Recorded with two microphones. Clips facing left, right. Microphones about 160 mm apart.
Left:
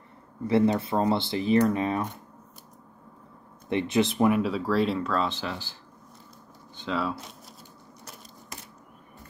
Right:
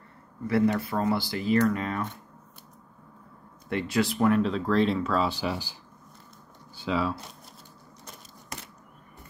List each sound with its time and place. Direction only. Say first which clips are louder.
0.5 s speech: left 2 dB; 25° left (ahead or behind)
3.6 s speech: left 2 dB; 20° left (ahead or behind)
4.3 s speech: right 1 dB; 5° left (ahead or behind)